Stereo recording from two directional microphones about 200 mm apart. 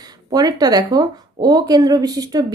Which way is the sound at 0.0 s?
20° right (ahead or behind).